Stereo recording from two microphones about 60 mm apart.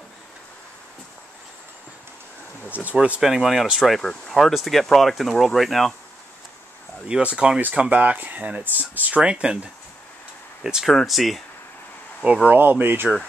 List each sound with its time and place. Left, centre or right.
2.7 s speech: right
3.2 s speech: centre
3.9 s speech: centre
7.1 s speech: centre
9.2 s speech: centre
10.9 s speech: centre
12.4 s speech: right